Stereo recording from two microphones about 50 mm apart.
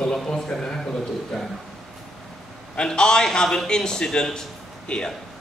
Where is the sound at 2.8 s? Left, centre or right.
Centre.